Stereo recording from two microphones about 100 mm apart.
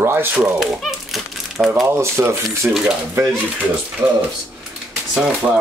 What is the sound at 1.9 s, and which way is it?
Speech, 25° right (ahead or behind).